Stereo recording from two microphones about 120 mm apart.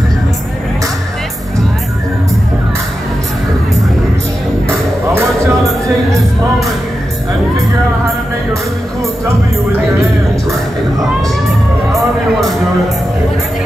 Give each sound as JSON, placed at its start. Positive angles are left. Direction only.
{"t": 4.6, "sound": "music", "side_deg": -25}